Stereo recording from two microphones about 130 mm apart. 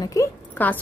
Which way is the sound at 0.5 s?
15° left (ahead or behind).